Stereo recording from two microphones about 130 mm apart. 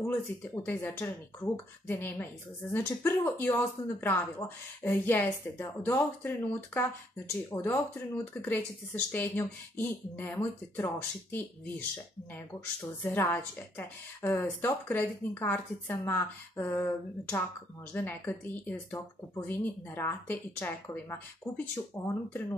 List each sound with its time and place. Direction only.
0.0 s speech: 15° left (ahead or behind)
12.4 s speech: 15° left (ahead or behind)